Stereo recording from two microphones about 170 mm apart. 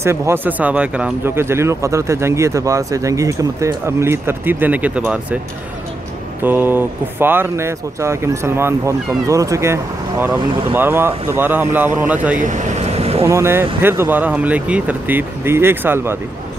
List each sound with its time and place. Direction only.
0.0 s speech: 15° right (ahead or behind)
6.4 s speech: 10° right (ahead or behind)
12.4 s air conditioning: 45° right (ahead or behind)
13.2 s speech: 15° right (ahead or behind)